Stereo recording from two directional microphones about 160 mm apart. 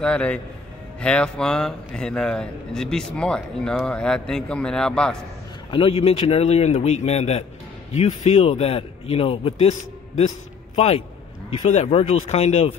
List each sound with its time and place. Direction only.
0.0 s a man's voice: 5° left (ahead or behind)
5.7 s a man's voice: 35° left (ahead or behind)
11.6 s speech: 45° left (ahead or behind)